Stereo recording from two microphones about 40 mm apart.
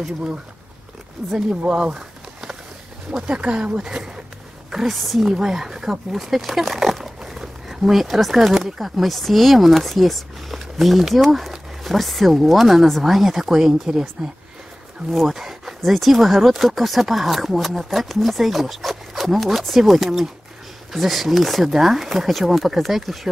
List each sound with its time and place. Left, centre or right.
1.2 s speech: centre
1.5 s speech: right
4.9 s speech: centre
5.4 s speech: centre
6.1 s speech: centre
15.1 s speech: centre